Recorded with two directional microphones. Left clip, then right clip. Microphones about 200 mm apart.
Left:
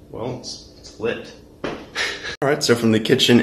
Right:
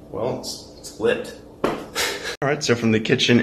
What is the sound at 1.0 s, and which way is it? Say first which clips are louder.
Speech: right 4 dB; 5° left (ahead or behind).